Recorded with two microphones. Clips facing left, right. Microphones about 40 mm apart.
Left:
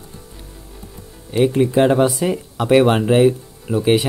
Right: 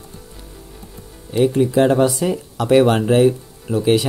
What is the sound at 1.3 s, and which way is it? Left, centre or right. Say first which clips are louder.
Speech: even; left.